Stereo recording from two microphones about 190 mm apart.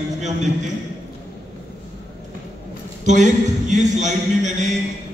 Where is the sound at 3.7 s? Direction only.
40° right (ahead or behind).